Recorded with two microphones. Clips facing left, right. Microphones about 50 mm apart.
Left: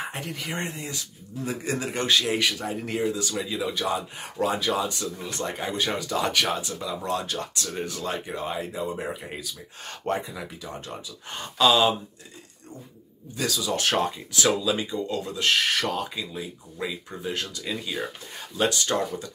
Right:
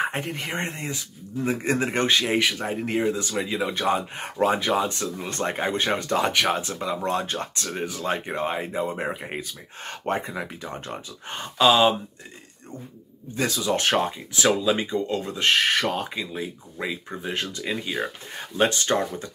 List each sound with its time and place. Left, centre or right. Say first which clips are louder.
0.2 s speech: right 3 dB; right
7.8 s speech: right 2 dB; centre
8.1 s speech: right 8 dB; right
13.3 s speech: right 3 dB; right
13.9 s speech: right 1 dB; right